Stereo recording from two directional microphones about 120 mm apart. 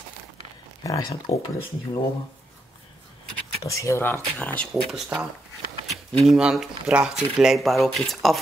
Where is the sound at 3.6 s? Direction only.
25° left (ahead or behind).